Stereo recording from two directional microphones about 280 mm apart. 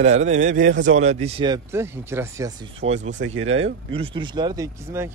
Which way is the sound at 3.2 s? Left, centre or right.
Right.